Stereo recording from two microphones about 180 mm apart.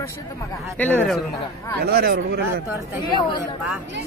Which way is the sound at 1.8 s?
60° right (ahead or behind).